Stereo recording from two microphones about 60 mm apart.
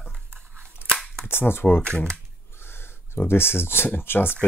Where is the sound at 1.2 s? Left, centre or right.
Left.